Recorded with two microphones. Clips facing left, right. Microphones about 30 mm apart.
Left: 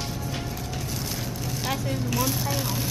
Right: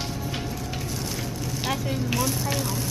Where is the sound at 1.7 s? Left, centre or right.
Centre.